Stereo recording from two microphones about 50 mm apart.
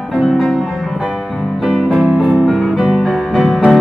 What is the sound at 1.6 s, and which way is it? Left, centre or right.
Music, centre.